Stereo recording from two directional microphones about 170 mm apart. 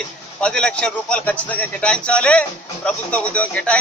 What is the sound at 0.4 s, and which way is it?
A man's voice, 5° left (ahead or behind).